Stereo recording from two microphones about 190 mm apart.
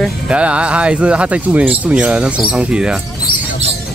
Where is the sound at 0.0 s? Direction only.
5° right (ahead or behind).